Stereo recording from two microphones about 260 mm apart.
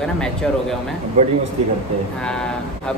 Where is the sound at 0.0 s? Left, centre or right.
Centre.